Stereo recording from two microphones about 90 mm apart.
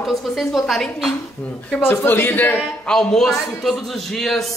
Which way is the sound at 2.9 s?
5° left (ahead or behind).